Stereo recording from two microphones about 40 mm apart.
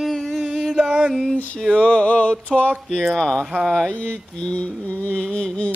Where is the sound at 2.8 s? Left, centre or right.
Centre.